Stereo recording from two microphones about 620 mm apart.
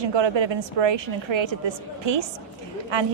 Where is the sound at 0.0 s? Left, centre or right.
Right.